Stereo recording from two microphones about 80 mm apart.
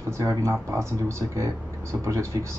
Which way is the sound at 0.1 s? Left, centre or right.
Right.